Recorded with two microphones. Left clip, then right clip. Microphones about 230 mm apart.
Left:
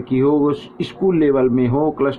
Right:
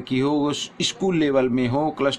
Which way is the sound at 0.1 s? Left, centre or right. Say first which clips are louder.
Left 6 dB; right.